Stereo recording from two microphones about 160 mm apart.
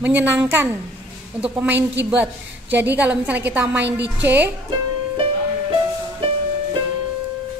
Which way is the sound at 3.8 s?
90° right.